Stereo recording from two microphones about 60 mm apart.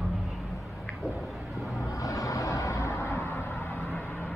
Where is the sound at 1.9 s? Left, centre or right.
Left.